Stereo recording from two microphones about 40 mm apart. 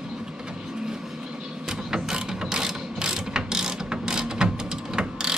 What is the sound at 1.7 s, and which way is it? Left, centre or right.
Ratchet, centre.